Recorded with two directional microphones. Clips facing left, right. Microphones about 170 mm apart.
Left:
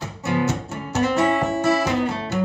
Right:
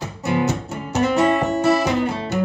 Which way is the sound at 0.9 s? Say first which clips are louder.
Right 2 dB; 15° right (ahead or behind).